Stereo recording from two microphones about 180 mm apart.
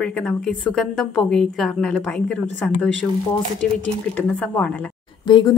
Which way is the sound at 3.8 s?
5° left (ahead or behind).